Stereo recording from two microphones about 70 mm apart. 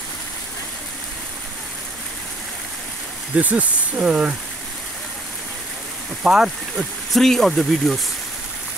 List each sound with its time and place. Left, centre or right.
3.3 s speech: right
6.2 s speech: centre
7.1 s speech: centre